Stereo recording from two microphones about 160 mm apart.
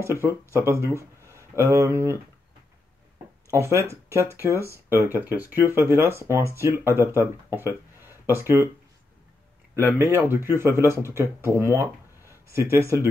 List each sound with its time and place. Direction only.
0.0 s speech: 15° right (ahead or behind)
1.2 s a sound: 15° right (ahead or behind)
3.4 s speech: 15° right (ahead or behind)
9.9 s speech: 15° right (ahead or behind)